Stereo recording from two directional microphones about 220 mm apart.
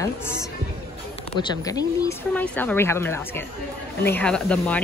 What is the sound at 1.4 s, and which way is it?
Speech, 20° left (ahead or behind).